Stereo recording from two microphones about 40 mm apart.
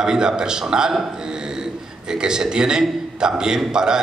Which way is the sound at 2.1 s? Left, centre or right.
Centre.